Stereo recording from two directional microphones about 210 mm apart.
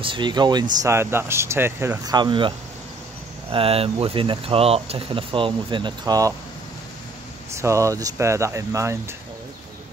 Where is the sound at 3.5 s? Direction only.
25° right (ahead or behind).